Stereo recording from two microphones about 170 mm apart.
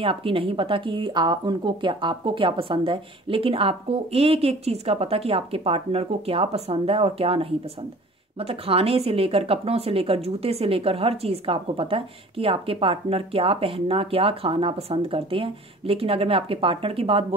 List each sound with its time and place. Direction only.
0.0 s speech: 30° right (ahead or behind)